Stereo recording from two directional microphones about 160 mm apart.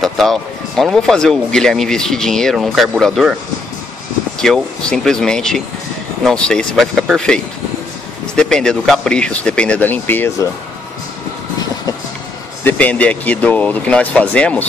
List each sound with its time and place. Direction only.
0.0 s speech: centre (ahead or behind)
4.4 s speech: 5° left (ahead or behind)
8.4 s speech: 5° left (ahead or behind)
12.6 s speech: 10° left (ahead or behind)